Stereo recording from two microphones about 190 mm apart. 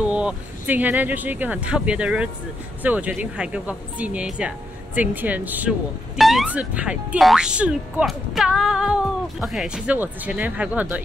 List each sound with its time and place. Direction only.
0.0 s speech: 5° right (ahead or behind)